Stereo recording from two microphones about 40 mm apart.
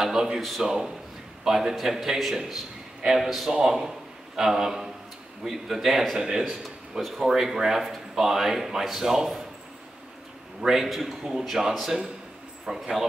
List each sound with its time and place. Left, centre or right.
0.0 s a man's voice: centre
7.2 s speech: centre
10.6 s a man's voice: centre